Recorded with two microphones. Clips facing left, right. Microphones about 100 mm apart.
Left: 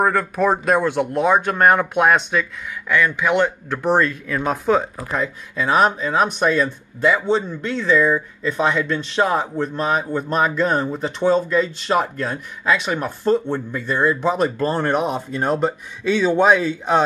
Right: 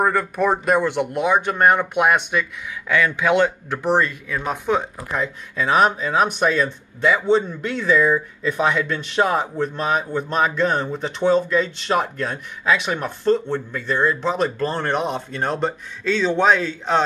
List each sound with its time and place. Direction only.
0.0 s speech: 5° right (ahead or behind)
3.7 s speech: 10° right (ahead or behind); by 17.0 s 10° left (ahead or behind)